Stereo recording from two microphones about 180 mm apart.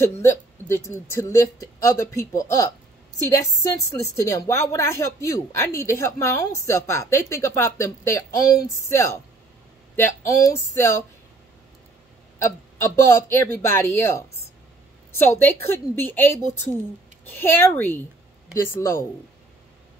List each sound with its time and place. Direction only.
0.2 s a woman's voice: 15° left (ahead or behind)
12.9 s a woman's voice: 15° left (ahead or behind)